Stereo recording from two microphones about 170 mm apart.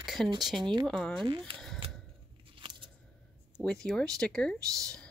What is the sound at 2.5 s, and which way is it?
Scissors, 30° right (ahead or behind).